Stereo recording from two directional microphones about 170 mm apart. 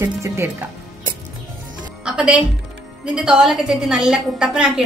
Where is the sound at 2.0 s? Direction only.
5° right (ahead or behind).